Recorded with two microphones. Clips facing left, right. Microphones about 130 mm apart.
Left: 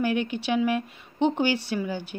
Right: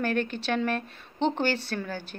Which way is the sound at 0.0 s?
15° left (ahead or behind).